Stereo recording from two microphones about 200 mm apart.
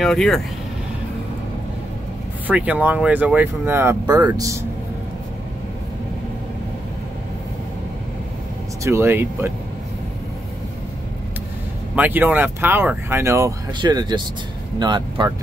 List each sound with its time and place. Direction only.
0.0 s speech: centre (ahead or behind)
2.4 s speech: 5° right (ahead or behind)
8.8 s speech: 15° right (ahead or behind)
11.9 s speech: 10° right (ahead or behind)